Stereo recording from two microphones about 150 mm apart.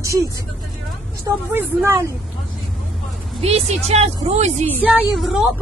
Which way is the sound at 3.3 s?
45° right (ahead or behind).